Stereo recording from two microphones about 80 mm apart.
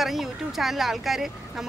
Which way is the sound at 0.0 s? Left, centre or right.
Centre.